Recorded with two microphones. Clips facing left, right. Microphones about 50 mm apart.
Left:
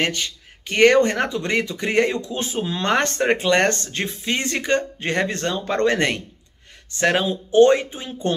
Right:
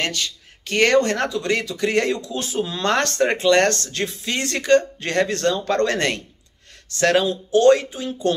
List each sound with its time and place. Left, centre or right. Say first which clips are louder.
0.0 s speech: left 2 dB; centre